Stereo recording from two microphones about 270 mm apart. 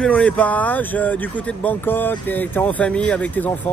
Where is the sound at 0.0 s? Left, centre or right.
Centre.